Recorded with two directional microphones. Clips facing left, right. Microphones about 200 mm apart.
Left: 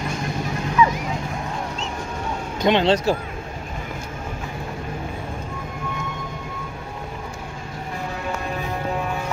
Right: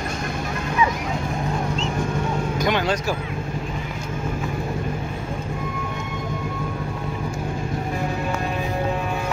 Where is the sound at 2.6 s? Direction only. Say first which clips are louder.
Left 7 dB; 25° left (ahead or behind).